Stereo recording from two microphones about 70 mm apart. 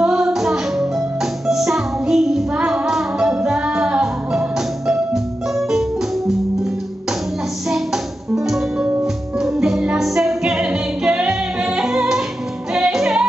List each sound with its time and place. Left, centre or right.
0.0 s music: centre